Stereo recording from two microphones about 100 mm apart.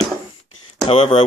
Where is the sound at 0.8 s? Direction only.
70° left (ahead or behind).